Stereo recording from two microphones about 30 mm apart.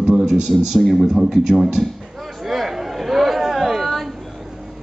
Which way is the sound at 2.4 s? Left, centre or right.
Centre.